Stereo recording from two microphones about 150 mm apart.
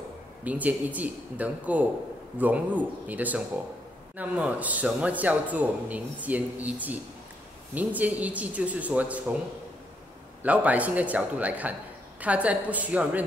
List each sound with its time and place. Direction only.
0.4 s a man's voice: 10° right (ahead or behind)
10.4 s a man's voice: 10° right (ahead or behind)